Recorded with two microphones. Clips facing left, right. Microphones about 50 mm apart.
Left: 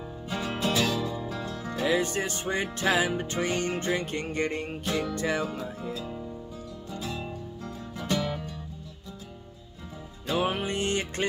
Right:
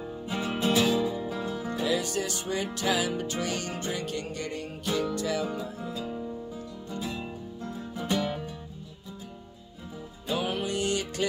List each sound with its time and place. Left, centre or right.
0.3 s music: centre
1.9 s music: left
5.9 s music: centre
10.4 s music: left